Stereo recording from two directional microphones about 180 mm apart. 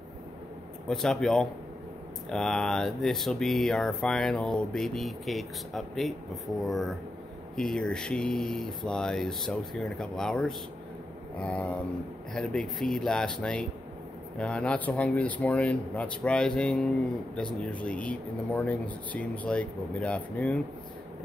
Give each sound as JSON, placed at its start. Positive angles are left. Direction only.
{"t": 0.8, "sound": "speech", "side_deg": 5}